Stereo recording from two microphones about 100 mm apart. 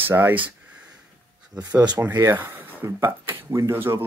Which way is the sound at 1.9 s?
25° right (ahead or behind).